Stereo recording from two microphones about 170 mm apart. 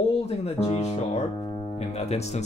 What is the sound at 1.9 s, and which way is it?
Speech, 40° left (ahead or behind).